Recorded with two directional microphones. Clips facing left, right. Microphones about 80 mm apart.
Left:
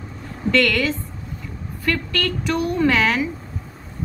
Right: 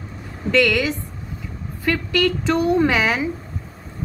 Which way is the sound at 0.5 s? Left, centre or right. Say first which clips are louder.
Right 1 dB; centre.